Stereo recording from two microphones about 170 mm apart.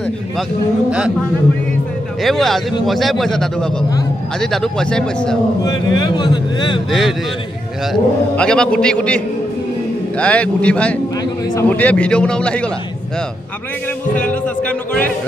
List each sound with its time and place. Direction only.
2.2 s a man's voice: centre (ahead or behind)
5.6 s speech: 25° left (ahead or behind)
6.9 s a man's voice: centre (ahead or behind)
14.1 s a man's voice: 10° left (ahead or behind)